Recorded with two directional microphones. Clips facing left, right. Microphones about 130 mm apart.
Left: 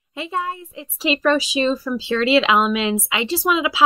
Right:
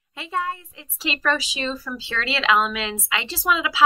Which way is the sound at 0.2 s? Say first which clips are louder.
Left 2 dB; 20° left (ahead or behind).